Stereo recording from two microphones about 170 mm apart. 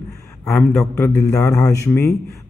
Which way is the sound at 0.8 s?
15° left (ahead or behind).